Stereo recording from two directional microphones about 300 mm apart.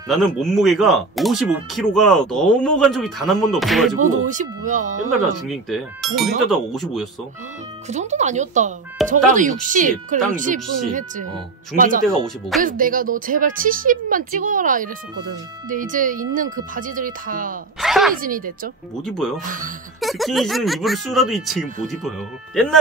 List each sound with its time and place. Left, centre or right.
0.1 s speech: centre
4.0 s a woman's voice: right
5.4 s speech: centre
7.9 s a woman's voice: right
17.7 s speech: centre
18.2 s a woman's voice: right
19.0 s speech: centre
19.4 s a woman's voice: right
20.0 s speech: centre